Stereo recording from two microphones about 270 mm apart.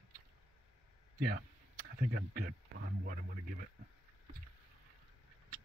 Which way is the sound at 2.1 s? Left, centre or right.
Right.